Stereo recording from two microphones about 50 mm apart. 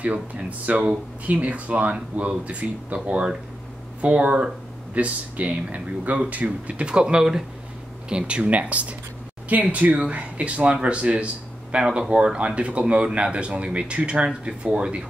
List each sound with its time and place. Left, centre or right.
0.0 s speech: right